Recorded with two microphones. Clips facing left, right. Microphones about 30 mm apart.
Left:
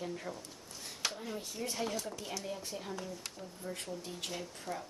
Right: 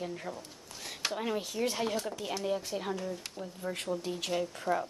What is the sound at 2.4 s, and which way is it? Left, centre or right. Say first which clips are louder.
Speech: right 8 dB; right.